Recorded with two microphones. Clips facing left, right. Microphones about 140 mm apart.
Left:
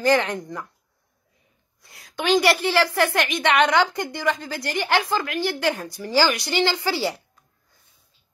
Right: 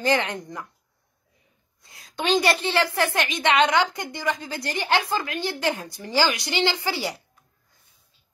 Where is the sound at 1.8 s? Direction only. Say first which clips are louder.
Left 1 dB; 20° right (ahead or behind).